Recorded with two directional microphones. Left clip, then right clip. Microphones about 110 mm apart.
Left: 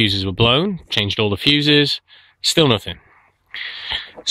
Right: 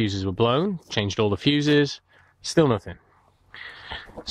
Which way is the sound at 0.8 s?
10° right (ahead or behind).